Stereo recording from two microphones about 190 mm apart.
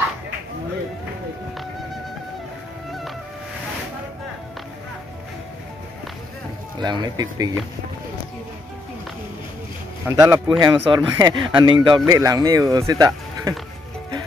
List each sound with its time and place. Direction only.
6.8 s speech: 20° right (ahead or behind)
10.0 s speech: 15° right (ahead or behind)